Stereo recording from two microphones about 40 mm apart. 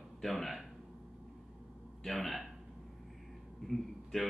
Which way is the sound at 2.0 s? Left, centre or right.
Centre.